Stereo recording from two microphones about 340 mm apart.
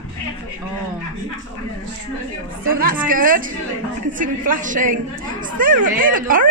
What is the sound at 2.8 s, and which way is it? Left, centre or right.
A woman's voice, right.